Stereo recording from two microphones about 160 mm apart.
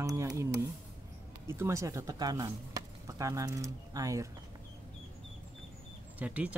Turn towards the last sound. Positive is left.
turn(degrees=-10)  # may be behind; listen again after turning